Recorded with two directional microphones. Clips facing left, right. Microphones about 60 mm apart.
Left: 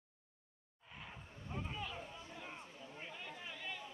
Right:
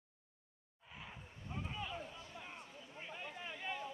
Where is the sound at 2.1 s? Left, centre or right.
Left.